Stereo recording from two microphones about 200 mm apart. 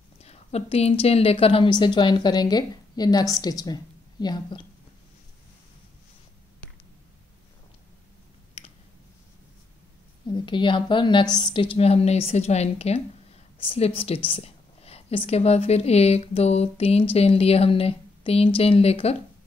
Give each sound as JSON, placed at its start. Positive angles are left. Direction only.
{"t": 0.2, "sound": "a woman's voice", "side_deg": 30}
{"t": 10.2, "sound": "a woman's voice", "side_deg": 25}